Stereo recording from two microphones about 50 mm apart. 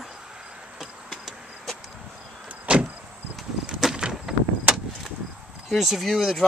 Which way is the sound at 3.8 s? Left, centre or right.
Centre.